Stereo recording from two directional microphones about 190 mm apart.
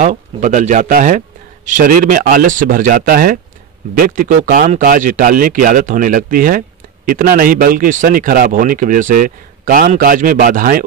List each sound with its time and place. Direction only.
0.0 s a man's voice: 40° right (ahead or behind)